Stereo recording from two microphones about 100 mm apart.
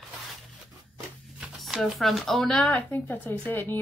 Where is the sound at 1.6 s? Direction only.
Centre (ahead or behind).